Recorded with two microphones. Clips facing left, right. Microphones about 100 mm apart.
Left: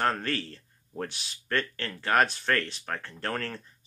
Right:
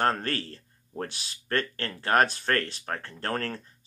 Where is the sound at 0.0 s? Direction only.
40° right (ahead or behind).